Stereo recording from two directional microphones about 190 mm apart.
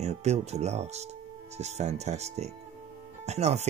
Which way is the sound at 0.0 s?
35° right (ahead or behind).